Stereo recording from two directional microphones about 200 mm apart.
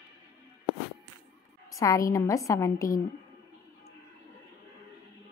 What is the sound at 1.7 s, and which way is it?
A woman's voice, 15° left (ahead or behind).